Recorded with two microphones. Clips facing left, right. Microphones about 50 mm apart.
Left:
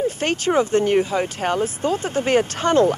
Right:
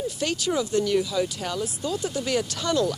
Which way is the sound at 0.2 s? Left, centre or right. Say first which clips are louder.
Left 5 dB; left.